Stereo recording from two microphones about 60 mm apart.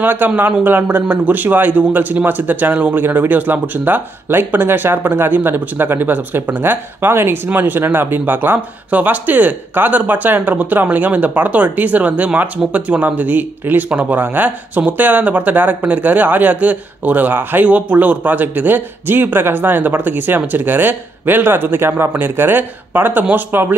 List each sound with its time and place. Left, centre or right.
0.0 s a man's voice: right